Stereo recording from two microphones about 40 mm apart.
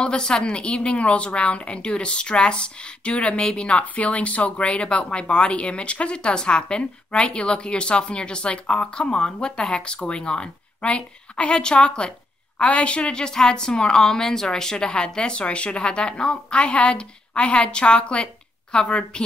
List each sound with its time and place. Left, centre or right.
0.0 s speech: left